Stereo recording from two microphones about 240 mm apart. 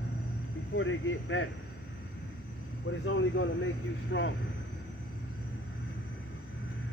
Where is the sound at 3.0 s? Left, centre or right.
Left.